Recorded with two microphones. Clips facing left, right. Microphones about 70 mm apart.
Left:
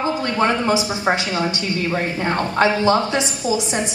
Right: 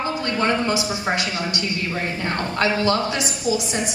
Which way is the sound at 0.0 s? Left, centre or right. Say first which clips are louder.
Left 3 dB; centre.